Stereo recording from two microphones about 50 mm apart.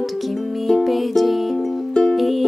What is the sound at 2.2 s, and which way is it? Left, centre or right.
Music, centre.